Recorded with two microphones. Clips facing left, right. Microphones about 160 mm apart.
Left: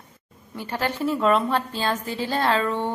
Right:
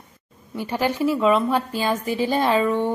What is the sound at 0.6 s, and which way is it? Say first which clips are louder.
A woman's voice: right 4 dB; 15° right (ahead or behind).